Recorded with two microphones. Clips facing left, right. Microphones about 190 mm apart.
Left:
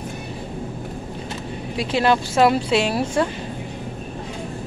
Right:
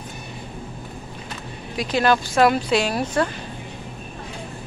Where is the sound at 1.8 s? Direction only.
25° left (ahead or behind).